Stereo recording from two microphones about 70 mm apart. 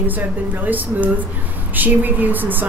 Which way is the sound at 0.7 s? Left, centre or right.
Right.